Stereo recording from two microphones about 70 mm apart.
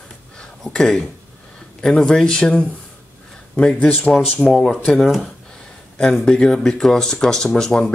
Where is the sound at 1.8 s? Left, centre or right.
Centre.